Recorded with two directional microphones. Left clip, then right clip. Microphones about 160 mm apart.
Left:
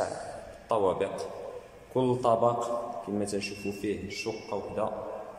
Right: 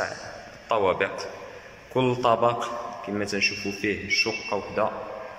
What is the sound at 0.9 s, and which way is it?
A man's voice, 20° left (ahead or behind).